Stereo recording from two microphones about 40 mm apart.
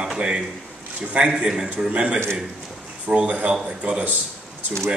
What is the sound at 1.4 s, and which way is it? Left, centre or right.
Speech, right.